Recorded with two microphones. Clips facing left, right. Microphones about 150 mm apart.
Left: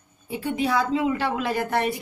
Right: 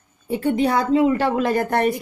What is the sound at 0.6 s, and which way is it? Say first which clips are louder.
A woman's voice: right 4 dB; 50° right (ahead or behind).